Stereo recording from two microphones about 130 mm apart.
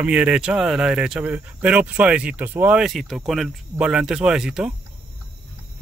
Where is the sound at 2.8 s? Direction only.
Centre (ahead or behind).